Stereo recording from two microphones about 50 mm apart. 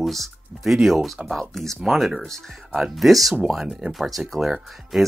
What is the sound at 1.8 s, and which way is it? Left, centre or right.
Speech, centre.